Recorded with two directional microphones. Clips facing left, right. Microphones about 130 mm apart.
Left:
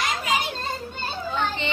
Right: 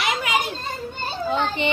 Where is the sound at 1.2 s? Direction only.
20° right (ahead or behind).